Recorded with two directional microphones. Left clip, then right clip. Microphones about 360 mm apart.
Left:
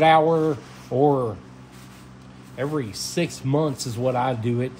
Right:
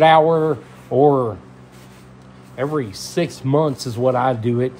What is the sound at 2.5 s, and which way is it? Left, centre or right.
Speech, centre.